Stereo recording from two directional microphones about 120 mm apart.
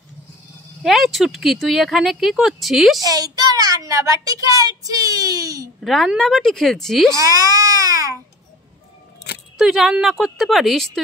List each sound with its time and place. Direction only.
0.8 s speech: centre (ahead or behind)
3.0 s a woman's voice: 30° right (ahead or behind)
5.8 s speech: centre (ahead or behind)
7.2 s speech: 30° right (ahead or behind)
9.6 s speech: 5° right (ahead or behind)